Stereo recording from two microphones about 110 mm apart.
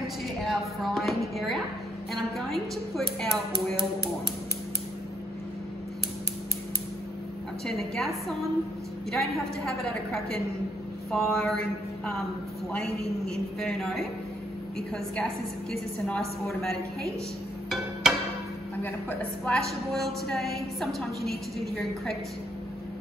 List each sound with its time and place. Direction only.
0.5 s a woman's voice: centre (ahead or behind)
7.6 s a woman's voice: 5° left (ahead or behind)
12.7 s a woman's voice: 5° left (ahead or behind)
15.7 s a woman's voice: 5° left (ahead or behind)
18.0 s tick-tock: 5° right (ahead or behind)
18.8 s a woman's voice: 15° left (ahead or behind)
19.5 s a woman's voice: centre (ahead or behind)